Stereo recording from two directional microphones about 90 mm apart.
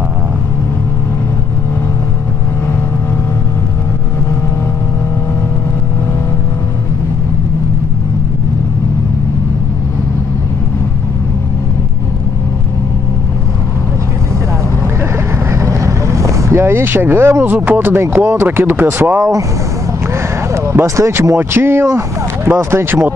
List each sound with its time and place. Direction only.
15.5 s speech: 35° right (ahead or behind)
20.5 s speech: 35° right (ahead or behind)